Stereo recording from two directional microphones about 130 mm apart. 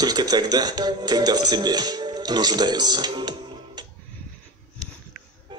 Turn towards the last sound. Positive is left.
turn(degrees=-35)  # may be behind; listen again after turning